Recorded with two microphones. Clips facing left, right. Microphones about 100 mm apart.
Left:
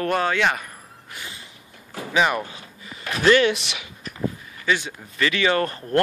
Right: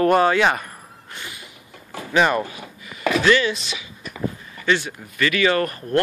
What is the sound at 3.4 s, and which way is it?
Speech, 65° left (ahead or behind).